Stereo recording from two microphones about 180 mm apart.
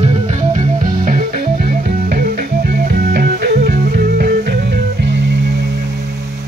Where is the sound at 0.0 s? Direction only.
35° right (ahead or behind); by 5.7 s 65° right (ahead or behind).